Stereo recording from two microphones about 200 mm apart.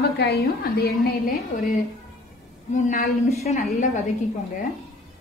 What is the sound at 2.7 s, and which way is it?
Speech, 40° left (ahead or behind).